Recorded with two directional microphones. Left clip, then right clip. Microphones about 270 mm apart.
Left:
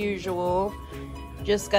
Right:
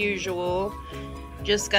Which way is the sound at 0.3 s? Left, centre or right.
Centre.